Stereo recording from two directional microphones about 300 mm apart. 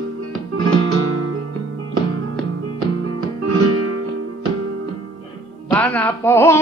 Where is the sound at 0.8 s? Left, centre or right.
Right.